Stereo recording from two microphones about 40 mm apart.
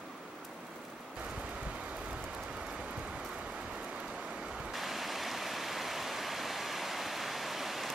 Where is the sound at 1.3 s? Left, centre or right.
Right.